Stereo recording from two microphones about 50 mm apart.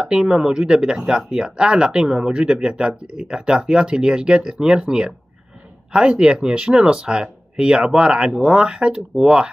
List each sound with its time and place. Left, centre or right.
0.0 s speech: centre